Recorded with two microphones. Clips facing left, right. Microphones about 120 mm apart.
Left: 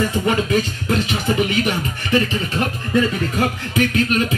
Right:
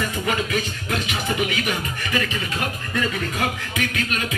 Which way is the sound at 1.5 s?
35° left (ahead or behind).